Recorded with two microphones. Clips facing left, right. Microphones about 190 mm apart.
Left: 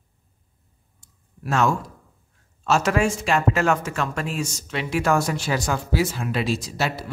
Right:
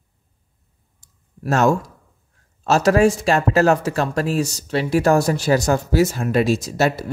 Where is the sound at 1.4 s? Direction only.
40° right (ahead or behind).